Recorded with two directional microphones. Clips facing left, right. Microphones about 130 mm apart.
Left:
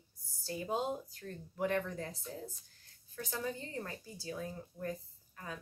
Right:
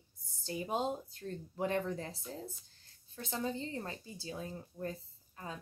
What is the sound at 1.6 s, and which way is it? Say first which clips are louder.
A woman's voice: even; 30° right (ahead or behind).